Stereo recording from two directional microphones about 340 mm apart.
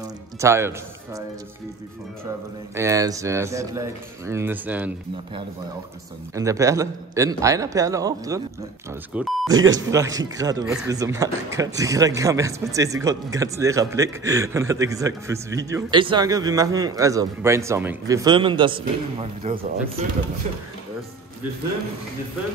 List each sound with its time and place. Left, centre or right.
0.0 s music: centre
2.7 s speech: centre